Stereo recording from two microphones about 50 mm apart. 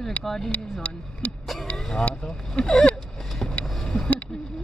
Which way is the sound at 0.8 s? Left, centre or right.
Left.